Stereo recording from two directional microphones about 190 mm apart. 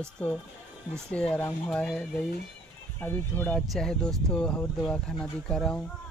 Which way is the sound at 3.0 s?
10° left (ahead or behind).